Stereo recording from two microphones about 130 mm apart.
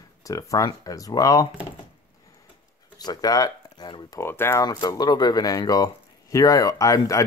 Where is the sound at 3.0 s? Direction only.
30° left (ahead or behind).